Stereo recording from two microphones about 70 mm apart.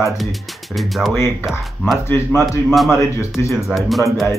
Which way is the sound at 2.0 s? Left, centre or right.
Left.